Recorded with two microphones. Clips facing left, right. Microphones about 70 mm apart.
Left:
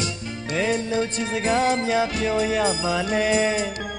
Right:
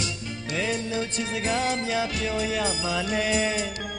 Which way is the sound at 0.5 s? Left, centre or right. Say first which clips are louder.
Left 5 dB; left.